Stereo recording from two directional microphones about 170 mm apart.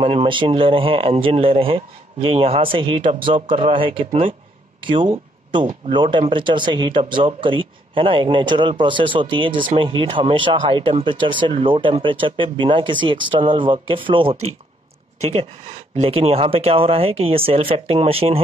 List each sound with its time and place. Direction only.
0.0 s speech: 30° right (ahead or behind)
16.0 s speech: 35° right (ahead or behind)